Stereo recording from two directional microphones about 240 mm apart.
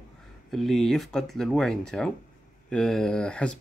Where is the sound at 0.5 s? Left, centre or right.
Centre.